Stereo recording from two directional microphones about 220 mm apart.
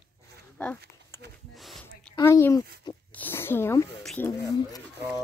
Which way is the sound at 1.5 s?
Centre (ahead or behind).